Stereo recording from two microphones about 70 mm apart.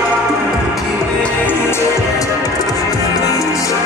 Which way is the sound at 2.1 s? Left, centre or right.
Left.